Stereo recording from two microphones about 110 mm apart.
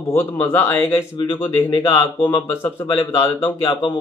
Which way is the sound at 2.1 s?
45° left (ahead or behind).